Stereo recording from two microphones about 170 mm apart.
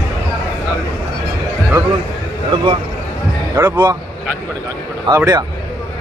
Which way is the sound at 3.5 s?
15° right (ahead or behind).